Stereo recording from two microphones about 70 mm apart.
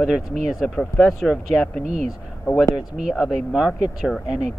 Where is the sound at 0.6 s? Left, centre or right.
Centre.